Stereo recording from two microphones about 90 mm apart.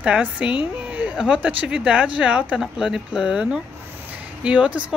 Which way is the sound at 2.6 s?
5° right (ahead or behind).